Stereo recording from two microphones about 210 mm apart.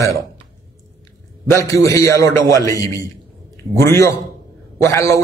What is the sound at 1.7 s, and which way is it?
A man's voice, 15° left (ahead or behind).